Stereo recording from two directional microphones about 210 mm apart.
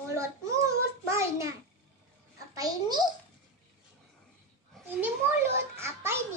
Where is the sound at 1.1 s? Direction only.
15° right (ahead or behind).